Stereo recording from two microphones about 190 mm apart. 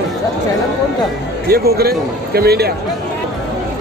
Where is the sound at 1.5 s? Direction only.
55° right (ahead or behind).